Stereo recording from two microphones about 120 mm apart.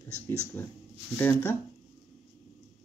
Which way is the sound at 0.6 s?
15° left (ahead or behind).